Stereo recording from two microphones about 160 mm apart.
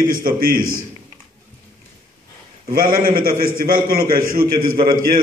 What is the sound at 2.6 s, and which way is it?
A man's voice, 65° right (ahead or behind).